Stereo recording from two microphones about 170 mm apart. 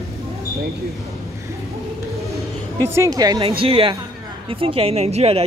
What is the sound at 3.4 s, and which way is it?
Speech, 35° right (ahead or behind).